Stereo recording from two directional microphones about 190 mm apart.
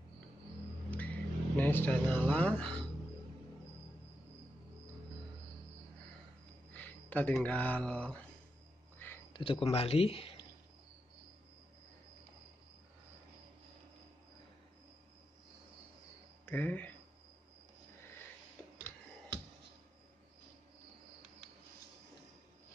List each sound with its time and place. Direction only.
0.8 s vehicle: 5° left (ahead or behind)
6.7 s speech: 10° left (ahead or behind)
8.9 s a sound: 10° left (ahead or behind)
9.3 s speech: 30° left (ahead or behind)
16.4 s speech: 10° left (ahead or behind)